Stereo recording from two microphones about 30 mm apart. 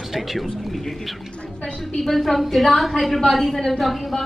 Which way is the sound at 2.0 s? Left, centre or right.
Centre.